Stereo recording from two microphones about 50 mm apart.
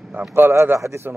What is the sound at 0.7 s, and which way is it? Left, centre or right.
Speech, right.